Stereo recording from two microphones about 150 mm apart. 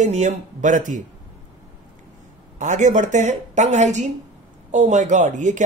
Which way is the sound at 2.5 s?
55° right (ahead or behind).